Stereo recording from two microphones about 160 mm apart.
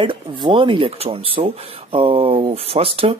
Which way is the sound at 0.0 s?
30° right (ahead or behind).